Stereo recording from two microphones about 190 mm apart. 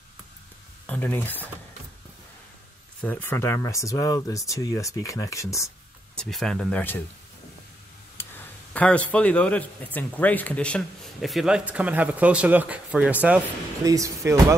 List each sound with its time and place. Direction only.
0.8 s speech: 10° left (ahead or behind)
3.0 s speech: 10° left (ahead or behind)
6.1 s speech: 5° left (ahead or behind)
8.2 s a sound: 15° left (ahead or behind)
8.7 s speech: 5° left (ahead or behind); by 14.4 s 15° right (ahead or behind)